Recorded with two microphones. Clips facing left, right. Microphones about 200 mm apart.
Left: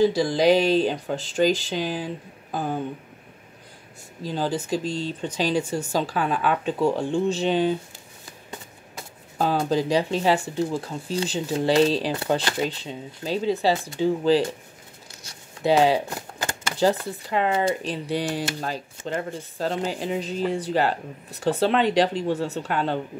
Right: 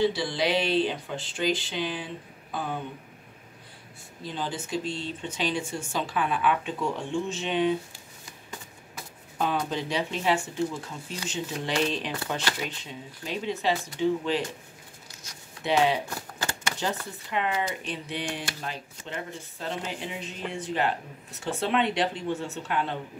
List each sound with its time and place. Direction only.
0.0 s speech: 40° left (ahead or behind)
4.2 s speech: 40° left (ahead or behind)
15.2 s a sound: 35° left (ahead or behind)
16.8 s speech: 35° left (ahead or behind)